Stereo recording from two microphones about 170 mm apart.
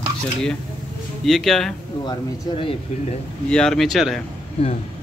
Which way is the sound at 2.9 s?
40° left (ahead or behind).